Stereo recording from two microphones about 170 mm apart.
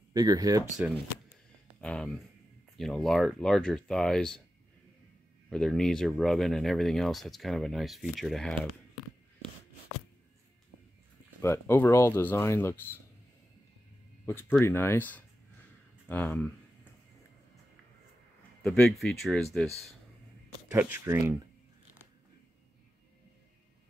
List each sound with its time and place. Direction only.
0.1 s speech: 20° right (ahead or behind)
1.8 s speech: 5° left (ahead or behind)
5.5 s speech: 5° left (ahead or behind)
11.4 s speech: 15° left (ahead or behind)
14.6 s speech: 15° left (ahead or behind)
18.6 s speech: 5° left (ahead or behind)
20.7 s speech: 10° right (ahead or behind)